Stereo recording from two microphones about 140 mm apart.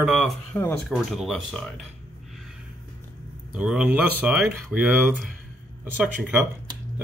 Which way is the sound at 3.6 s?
10° right (ahead or behind).